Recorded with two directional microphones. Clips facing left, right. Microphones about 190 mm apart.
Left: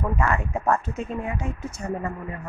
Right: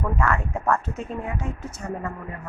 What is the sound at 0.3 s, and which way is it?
Speech, 15° left (ahead or behind).